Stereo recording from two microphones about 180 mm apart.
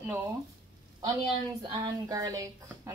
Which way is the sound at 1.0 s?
20° right (ahead or behind).